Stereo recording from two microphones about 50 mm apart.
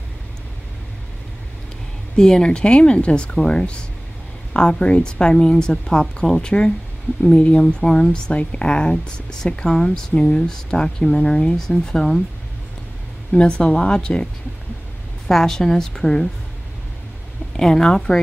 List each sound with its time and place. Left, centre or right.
2.1 s speech: centre
13.3 s speech: left
17.6 s speech: centre